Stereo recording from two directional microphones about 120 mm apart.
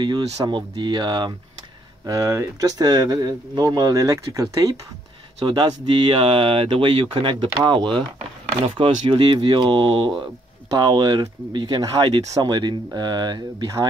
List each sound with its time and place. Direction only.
0.0 s speech: 40° right (ahead or behind)
2.0 s speech: 25° right (ahead or behind)
5.4 s speech: 40° right (ahead or behind)
9.1 s speech: 45° right (ahead or behind)